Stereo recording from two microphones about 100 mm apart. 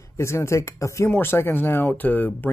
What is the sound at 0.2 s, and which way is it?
Speech, 30° left (ahead or behind).